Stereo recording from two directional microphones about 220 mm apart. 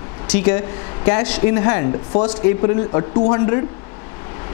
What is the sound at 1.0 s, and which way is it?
Speech, 15° left (ahead or behind).